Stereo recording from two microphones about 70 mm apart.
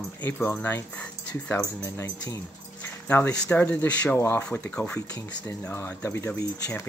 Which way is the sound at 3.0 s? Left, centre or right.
Left.